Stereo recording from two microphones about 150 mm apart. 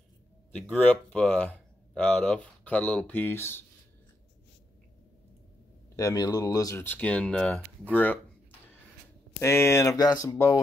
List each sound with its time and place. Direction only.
0.5 s speech: 5° left (ahead or behind)
5.9 s speech: 25° left (ahead or behind)
9.4 s speech: 20° left (ahead or behind)